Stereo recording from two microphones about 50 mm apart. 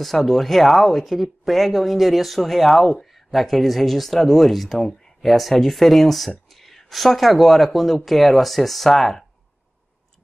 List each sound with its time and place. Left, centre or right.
0.0 s speech: centre